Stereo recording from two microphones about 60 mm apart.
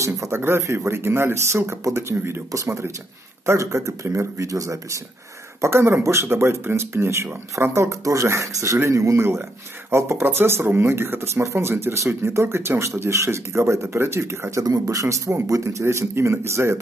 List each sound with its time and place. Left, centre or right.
0.3 s speech: right
2.5 s speech: right
4.5 s speech: right
5.6 s speech: right
8.0 s speech: right
14.6 s a man's voice: right
15.4 s a man's voice: right
15.8 s speech: right